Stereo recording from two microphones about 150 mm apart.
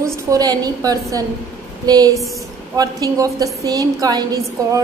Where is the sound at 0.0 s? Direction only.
25° right (ahead or behind).